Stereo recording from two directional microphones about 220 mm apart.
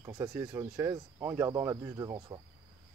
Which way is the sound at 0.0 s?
15° right (ahead or behind).